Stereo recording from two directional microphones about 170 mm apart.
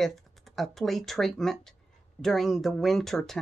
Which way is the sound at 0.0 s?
Centre (ahead or behind).